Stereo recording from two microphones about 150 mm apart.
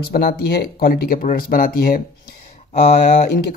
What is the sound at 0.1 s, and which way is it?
Speech, 90° left.